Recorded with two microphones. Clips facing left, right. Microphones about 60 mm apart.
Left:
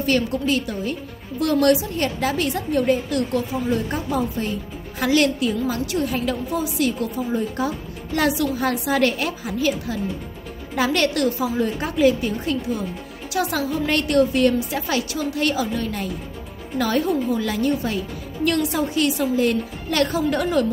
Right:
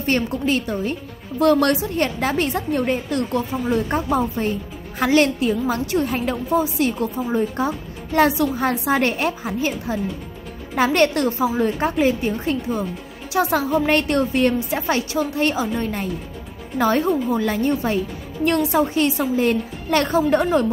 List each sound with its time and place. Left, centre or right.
0.0 s a woman's voice: right